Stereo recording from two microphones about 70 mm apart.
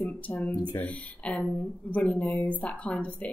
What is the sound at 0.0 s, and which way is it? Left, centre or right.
A woman's voice, left.